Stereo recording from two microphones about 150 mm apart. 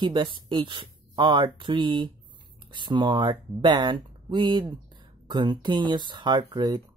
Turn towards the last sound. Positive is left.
turn(degrees=-30)  # may be behind; listen again after turning